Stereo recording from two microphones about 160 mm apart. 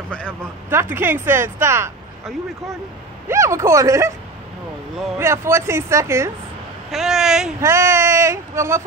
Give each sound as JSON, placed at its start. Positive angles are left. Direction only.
{"t": 0.7, "sound": "speech", "side_deg": -15}
{"t": 3.3, "sound": "speech", "side_deg": -15}
{"t": 5.2, "sound": "speech", "side_deg": -15}
{"t": 6.9, "sound": "speech", "side_deg": 0}
{"t": 7.6, "sound": "speech", "side_deg": -15}